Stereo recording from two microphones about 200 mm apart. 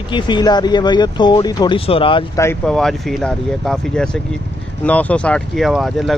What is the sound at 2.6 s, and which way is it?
Speech, 5° left (ahead or behind).